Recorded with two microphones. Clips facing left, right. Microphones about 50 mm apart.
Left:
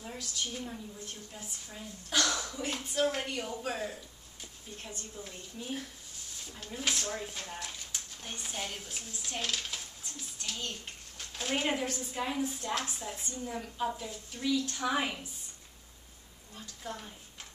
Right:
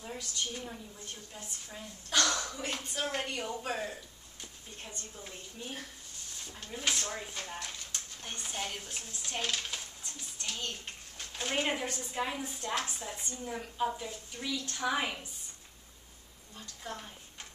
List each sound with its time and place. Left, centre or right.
0.0 s speech: centre
9.3 s a sound: centre
11.1 s speech: centre
16.5 s speech: centre